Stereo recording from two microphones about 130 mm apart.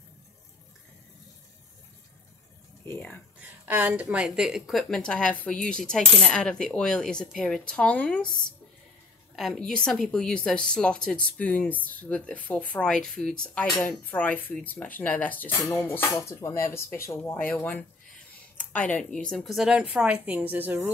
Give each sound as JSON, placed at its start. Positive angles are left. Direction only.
{"t": 2.8, "sound": "speech", "side_deg": 15}
{"t": 3.3, "sound": "a woman's voice", "side_deg": -10}
{"t": 9.3, "sound": "a woman's voice", "side_deg": 0}